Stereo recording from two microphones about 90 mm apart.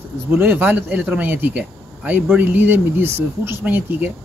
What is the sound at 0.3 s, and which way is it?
Speech, 20° right (ahead or behind).